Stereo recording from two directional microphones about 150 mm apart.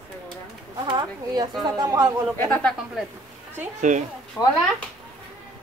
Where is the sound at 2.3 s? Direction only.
10° left (ahead or behind).